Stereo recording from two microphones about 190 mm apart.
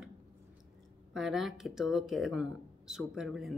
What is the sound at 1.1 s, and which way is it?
Speech, centre (ahead or behind).